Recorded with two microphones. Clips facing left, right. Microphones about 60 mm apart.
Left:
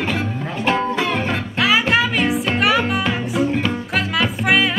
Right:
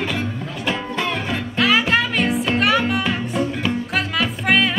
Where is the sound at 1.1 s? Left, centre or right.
Left.